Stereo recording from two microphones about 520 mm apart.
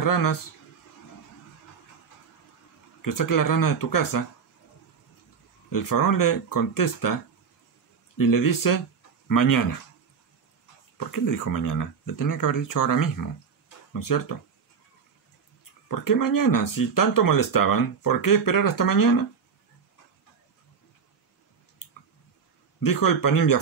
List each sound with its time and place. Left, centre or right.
0.0 s speech: left
3.0 s speech: left
5.7 s speech: left
8.2 s speech: left
11.1 s speech: left
15.9 s speech: left
22.8 s speech: left